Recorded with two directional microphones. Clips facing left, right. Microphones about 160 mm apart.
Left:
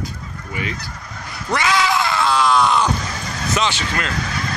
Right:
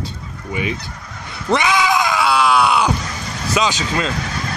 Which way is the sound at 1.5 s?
15° right (ahead or behind).